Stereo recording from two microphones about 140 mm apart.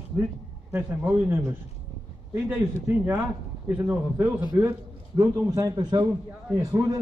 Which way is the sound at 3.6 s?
10° right (ahead or behind).